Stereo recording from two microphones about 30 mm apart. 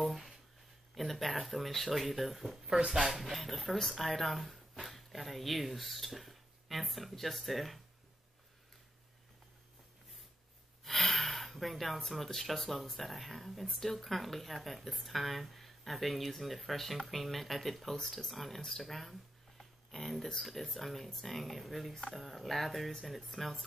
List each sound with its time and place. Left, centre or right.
0.0 s a sound: centre
0.9 s speech: centre
10.8 s gasp: centre
12.4 s speech: centre
19.6 s a sound: centre
20.3 s speech: centre